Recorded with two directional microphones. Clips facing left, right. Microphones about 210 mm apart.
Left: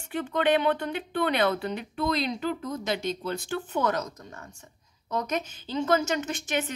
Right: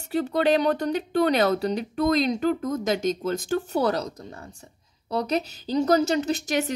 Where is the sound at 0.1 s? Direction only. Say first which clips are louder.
Right 3 dB; 40° right (ahead or behind).